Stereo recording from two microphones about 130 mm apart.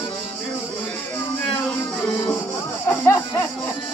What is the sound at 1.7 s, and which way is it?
Music, 5° left (ahead or behind).